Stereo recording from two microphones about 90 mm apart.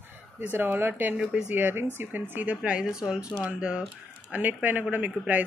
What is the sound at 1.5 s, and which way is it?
Speech, 25° right (ahead or behind).